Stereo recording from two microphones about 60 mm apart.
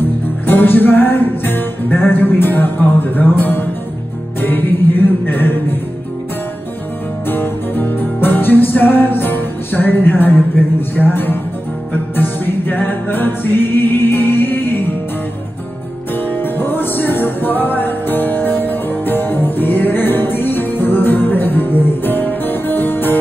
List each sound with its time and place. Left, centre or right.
0.5 s music: left
7.2 s music: left
16.3 s music: left